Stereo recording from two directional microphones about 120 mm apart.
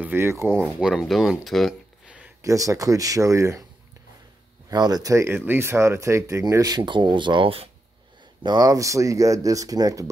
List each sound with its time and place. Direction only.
0.0 s speech: 20° right (ahead or behind)
0.7 s speech: 5° right (ahead or behind)
2.4 s speech: 25° right (ahead or behind)
4.6 s speech: 35° right (ahead or behind); by 7.7 s 50° right (ahead or behind)
8.4 s speech: 35° right (ahead or behind)